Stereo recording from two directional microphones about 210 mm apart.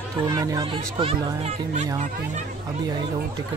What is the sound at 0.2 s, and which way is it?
Speech, 20° right (ahead or behind).